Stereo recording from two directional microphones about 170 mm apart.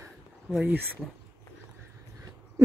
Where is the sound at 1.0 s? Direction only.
5° left (ahead or behind).